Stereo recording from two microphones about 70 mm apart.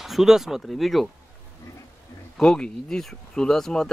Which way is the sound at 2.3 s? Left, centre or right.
Centre.